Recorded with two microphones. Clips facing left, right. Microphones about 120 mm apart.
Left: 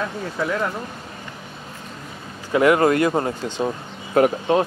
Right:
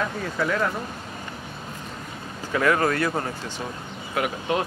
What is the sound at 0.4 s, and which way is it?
Speech, 15° left (ahead or behind).